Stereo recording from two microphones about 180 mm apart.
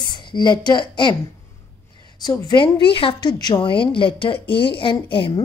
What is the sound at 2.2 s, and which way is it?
A woman's voice, 25° left (ahead or behind).